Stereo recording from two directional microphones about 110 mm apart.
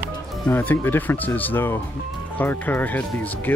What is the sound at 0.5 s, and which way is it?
Speech, 20° left (ahead or behind).